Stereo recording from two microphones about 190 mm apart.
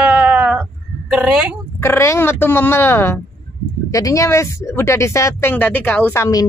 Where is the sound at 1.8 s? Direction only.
15° left (ahead or behind).